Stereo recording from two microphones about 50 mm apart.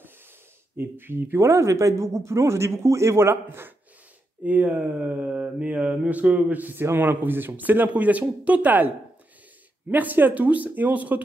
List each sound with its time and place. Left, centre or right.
0.7 s speech: right
1.4 s a man's voice: right
3.4 s speech: right
4.5 s mantra: right
5.9 s speech: right
6.8 s speech: right